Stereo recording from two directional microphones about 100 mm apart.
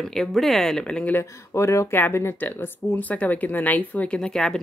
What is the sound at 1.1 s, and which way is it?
Speech, 25° left (ahead or behind).